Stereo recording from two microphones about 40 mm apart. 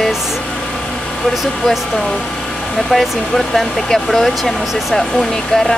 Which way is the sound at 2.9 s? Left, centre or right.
Centre.